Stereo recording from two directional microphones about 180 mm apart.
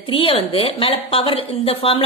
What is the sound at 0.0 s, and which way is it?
A woman's voice, 30° left (ahead or behind).